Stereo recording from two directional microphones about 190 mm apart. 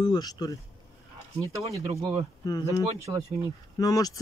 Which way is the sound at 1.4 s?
15° right (ahead or behind).